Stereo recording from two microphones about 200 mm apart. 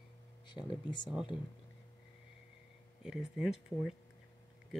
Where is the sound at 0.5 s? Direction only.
25° left (ahead or behind).